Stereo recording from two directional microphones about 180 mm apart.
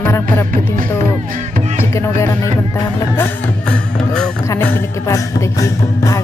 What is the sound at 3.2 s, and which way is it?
Music, 5° left (ahead or behind).